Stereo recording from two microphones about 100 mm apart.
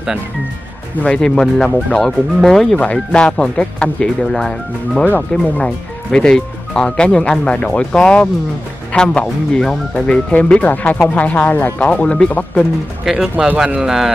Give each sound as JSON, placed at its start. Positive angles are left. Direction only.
{"t": 1.0, "sound": "speech", "side_deg": 10}
{"t": 13.0, "sound": "speech", "side_deg": -5}